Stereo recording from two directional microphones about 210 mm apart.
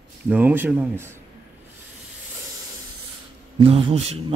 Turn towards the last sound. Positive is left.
turn(degrees=-25)  # may be behind; listen again after turning